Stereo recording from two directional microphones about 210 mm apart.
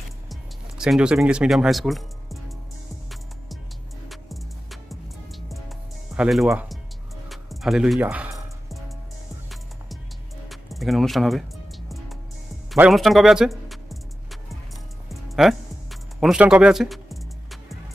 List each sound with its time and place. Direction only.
0.3 s speech: 5° right (ahead or behind)
4.1 s music: centre (ahead or behind)
6.1 s speech: centre (ahead or behind)
7.2 s music: centre (ahead or behind)
10.5 s speech: centre (ahead or behind)
12.7 s music: 5° right (ahead or behind)